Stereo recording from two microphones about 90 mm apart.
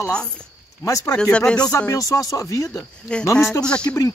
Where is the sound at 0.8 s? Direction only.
35° left (ahead or behind).